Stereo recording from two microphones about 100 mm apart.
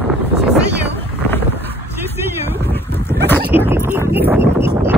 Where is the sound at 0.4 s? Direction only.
15° right (ahead or behind).